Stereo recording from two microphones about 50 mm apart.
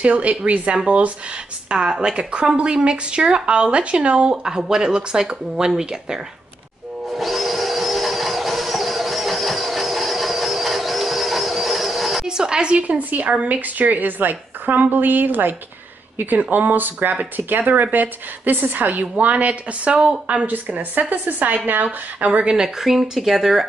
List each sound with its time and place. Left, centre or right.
0.0 s speech: right
7.1 s a sound: centre
12.3 s a sound: centre
12.7 s a woman's voice: right
22.5 s speech: centre
22.8 s speech: centre